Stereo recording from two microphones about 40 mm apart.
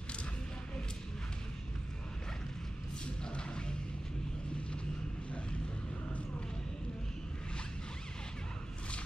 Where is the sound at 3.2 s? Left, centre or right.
Left.